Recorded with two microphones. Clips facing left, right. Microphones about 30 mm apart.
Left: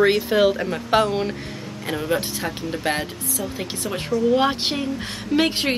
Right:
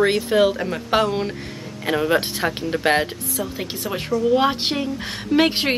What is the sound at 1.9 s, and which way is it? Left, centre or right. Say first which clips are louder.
Speech: right 4 dB; right.